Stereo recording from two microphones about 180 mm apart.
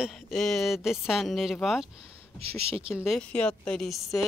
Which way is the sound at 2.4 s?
35° right (ahead or behind).